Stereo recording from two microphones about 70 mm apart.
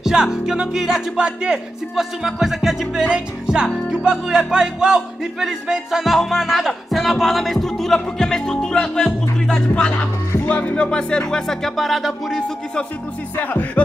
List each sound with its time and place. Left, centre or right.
0.0 s speech: centre
10.4 s speech: left; by 12.4 s centre
13.4 s music: left